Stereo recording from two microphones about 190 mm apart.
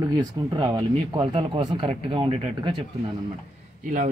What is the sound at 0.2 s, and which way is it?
Speech, 20° right (ahead or behind).